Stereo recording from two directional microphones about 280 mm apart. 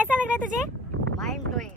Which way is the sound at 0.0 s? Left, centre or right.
Centre.